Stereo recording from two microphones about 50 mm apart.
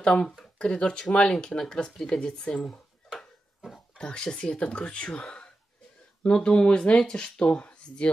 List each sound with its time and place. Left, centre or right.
0.0 s speech: left
3.2 s a sound: centre
4.0 s speech: centre